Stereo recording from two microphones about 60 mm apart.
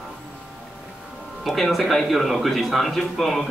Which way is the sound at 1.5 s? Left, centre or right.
Centre.